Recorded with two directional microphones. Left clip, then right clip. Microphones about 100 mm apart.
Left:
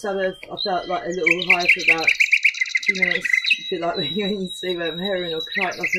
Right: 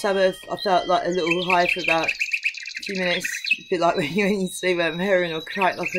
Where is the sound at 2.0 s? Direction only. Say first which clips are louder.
Left 7 dB; 15° left (ahead or behind).